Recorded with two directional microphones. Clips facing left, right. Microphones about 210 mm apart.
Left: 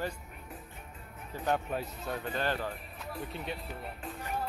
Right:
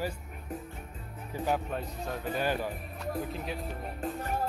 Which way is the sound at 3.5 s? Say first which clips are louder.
Right 4 dB; 45° right (ahead or behind).